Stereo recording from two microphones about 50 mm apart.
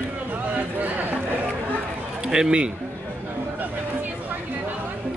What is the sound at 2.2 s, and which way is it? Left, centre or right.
Speech, centre.